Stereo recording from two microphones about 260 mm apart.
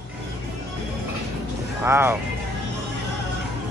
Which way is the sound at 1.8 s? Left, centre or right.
Centre.